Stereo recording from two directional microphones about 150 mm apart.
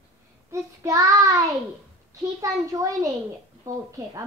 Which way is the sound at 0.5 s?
20° right (ahead or behind).